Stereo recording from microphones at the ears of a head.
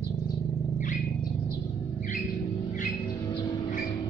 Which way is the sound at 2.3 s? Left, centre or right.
Right.